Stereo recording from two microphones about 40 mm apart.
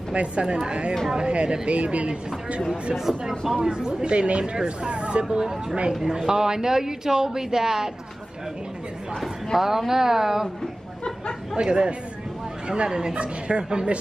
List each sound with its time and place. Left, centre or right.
0.1 s speech: right
2.7 s a woman's voice: centre
3.5 s a woman's voice: right
9.6 s a woman's voice: centre
11.5 s speech: right